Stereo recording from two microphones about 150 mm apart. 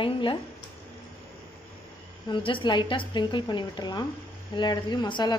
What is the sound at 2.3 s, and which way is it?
A woman's voice, 35° left (ahead or behind).